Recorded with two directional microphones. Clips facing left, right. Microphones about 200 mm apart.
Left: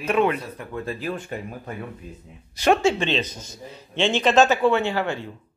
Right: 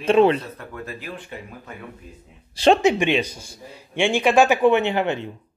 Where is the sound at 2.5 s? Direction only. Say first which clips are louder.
Right 3 dB; 25° right (ahead or behind).